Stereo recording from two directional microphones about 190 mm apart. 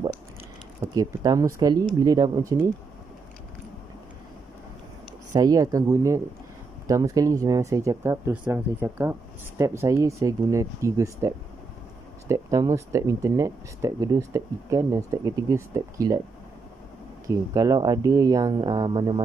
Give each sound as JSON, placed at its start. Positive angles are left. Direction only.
{"t": 0.7, "sound": "speech", "side_deg": -20}
{"t": 5.3, "sound": "speech", "side_deg": -20}
{"t": 17.6, "sound": "speech", "side_deg": -20}